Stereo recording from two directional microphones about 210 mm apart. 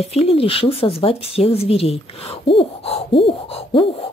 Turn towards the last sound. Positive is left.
turn(degrees=25)  # may be behind; listen again after turning